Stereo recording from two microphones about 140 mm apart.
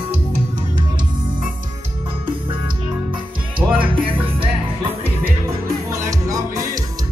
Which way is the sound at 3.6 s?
40° right (ahead or behind).